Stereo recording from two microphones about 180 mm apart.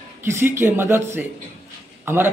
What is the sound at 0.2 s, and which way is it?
A man's voice, 15° right (ahead or behind).